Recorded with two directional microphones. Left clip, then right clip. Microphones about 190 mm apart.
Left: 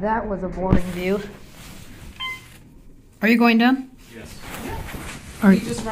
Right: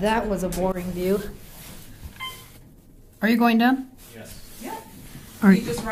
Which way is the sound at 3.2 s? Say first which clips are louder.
Left 3 dB; 15° right (ahead or behind).